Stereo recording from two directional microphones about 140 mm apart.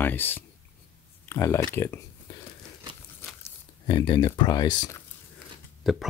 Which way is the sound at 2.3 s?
30° left (ahead or behind).